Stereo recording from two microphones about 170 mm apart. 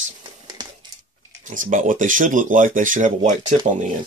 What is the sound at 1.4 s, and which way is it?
Speech, 50° right (ahead or behind).